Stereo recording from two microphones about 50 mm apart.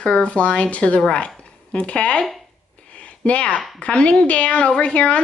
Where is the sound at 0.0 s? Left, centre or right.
Left.